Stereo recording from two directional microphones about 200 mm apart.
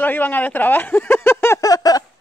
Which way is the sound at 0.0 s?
10° left (ahead or behind).